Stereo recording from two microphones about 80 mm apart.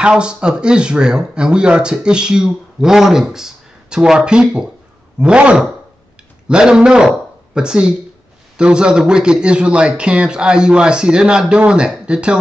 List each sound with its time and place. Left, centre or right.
0.0 s speech: centre